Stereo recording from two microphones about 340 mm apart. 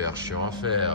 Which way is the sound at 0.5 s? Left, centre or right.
Centre.